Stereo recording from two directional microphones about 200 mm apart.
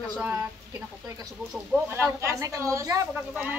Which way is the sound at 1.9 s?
15° right (ahead or behind).